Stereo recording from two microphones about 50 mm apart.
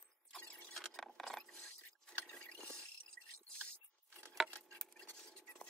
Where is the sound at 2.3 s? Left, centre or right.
Left.